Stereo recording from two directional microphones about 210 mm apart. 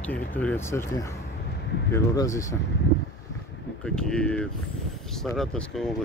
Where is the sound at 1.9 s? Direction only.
15° left (ahead or behind).